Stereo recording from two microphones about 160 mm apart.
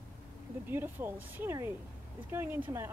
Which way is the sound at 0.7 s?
15° right (ahead or behind).